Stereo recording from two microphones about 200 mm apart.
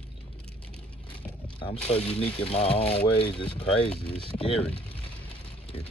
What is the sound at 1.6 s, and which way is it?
Speech, 30° left (ahead or behind).